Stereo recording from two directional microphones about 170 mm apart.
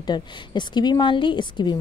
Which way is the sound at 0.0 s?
25° left (ahead or behind).